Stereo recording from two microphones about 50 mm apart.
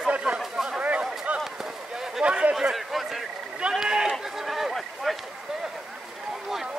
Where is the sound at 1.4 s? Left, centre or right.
Centre.